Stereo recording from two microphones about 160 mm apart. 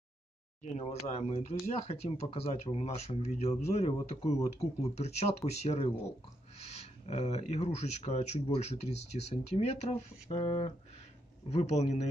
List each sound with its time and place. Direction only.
0.7 s speech: 40° left (ahead or behind)